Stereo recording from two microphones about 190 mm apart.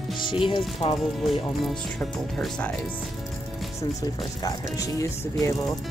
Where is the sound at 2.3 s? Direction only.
5° left (ahead or behind).